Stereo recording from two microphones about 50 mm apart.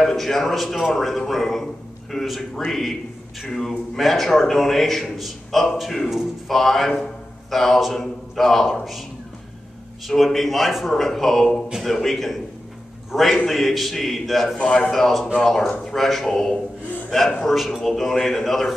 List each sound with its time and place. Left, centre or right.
0.0 s speech: centre
10.0 s speech: centre
14.6 s a man's voice: left
14.9 s speech: centre